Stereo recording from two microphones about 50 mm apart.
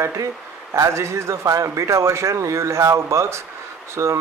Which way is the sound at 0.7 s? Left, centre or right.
Right.